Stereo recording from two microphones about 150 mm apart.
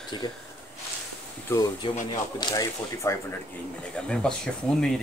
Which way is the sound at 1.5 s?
15° left (ahead or behind).